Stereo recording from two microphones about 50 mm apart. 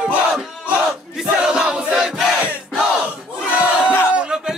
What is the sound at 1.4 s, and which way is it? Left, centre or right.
Crowd, centre.